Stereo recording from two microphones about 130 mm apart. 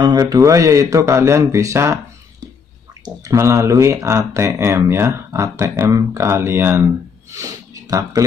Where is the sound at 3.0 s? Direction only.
25° right (ahead or behind).